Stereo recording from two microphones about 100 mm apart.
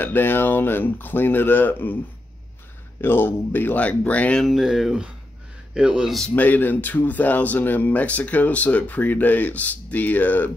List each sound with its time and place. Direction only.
0.0 s speech: 20° left (ahead or behind)
3.0 s speech: 20° left (ahead or behind)
4.5 s speech: 5° right (ahead or behind)
6.3 s speech: 15° left (ahead or behind)